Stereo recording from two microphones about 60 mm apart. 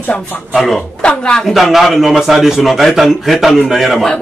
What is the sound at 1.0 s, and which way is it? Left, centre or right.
Speech, centre.